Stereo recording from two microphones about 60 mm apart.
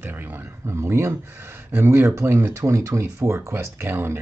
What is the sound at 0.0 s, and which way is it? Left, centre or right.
Speech, right.